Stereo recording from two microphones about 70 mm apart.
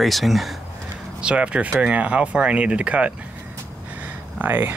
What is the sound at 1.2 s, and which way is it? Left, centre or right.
Speech, centre.